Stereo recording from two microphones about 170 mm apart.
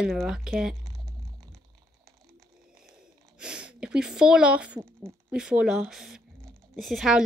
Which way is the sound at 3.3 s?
5° right (ahead or behind).